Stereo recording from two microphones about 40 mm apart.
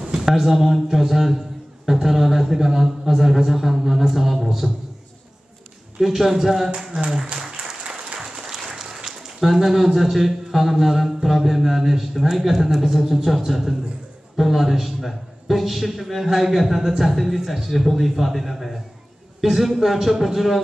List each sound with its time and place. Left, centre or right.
0.2 s a man's voice: centre
5.9 s a man's voice: centre
7.3 s applause: right
8.2 s a sound: centre
11.2 s a man's voice: centre